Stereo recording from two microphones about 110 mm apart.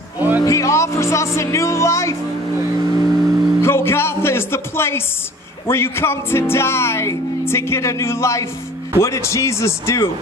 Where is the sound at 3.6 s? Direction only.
25° left (ahead or behind).